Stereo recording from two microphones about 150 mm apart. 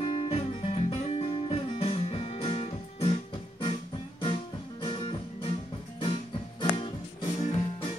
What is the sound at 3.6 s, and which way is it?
Music, 35° left (ahead or behind).